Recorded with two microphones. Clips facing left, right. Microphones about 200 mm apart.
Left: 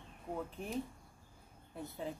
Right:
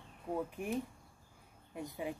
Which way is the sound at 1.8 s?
10° right (ahead or behind).